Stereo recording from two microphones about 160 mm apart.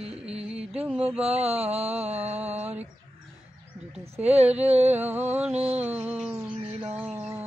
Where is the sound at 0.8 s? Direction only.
10° right (ahead or behind).